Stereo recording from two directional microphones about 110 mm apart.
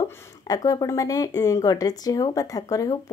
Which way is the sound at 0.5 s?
35° left (ahead or behind).